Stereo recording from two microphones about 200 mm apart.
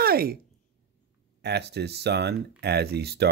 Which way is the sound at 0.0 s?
50° right (ahead or behind).